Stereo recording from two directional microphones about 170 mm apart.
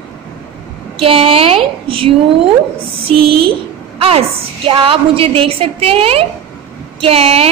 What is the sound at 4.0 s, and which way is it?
A woman's voice, 35° right (ahead or behind).